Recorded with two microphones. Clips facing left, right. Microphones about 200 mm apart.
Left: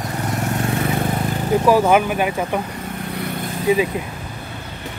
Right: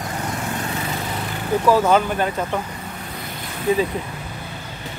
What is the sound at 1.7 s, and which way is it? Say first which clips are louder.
Speech: left 1 dB; 10° left (ahead or behind).